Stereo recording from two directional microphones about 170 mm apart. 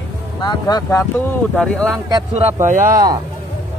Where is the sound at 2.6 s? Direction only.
50° right (ahead or behind).